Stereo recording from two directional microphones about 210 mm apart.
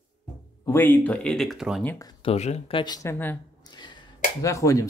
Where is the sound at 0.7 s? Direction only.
10° left (ahead or behind).